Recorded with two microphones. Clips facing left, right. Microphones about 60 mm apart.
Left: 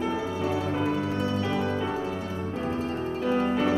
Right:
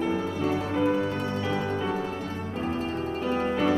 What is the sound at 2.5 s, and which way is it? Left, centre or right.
Music, right.